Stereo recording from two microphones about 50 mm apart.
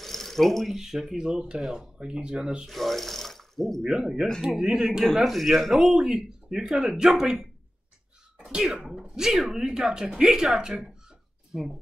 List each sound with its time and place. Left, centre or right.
0.0 s speech: centre
2.0 s speech: centre
2.6 s rub: centre
3.8 s speech: centre
8.8 s speech: centre